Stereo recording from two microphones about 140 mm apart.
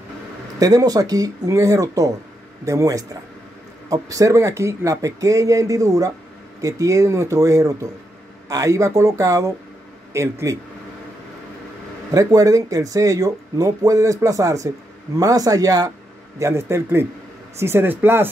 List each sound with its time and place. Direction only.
0.6 s speech: 25° right (ahead or behind)
12.1 s speech: 25° right (ahead or behind)